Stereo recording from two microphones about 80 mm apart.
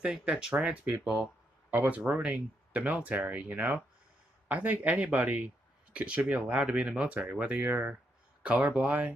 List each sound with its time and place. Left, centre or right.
0.0 s speech: centre
7.6 s speech: right